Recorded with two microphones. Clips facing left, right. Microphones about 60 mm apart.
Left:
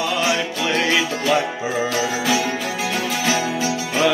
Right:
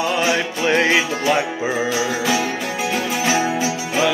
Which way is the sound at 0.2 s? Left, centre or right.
Right.